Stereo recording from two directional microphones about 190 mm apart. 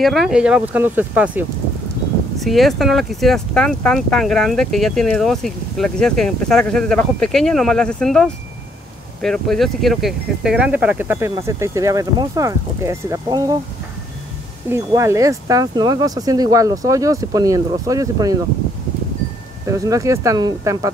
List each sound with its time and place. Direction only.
0.0 s speech: centre (ahead or behind)
2.4 s speech: centre (ahead or behind); by 13.6 s 20° right (ahead or behind)
14.7 s speech: 15° right (ahead or behind)
19.7 s speech: 15° right (ahead or behind)